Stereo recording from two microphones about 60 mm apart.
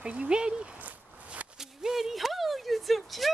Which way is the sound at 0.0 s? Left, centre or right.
Right.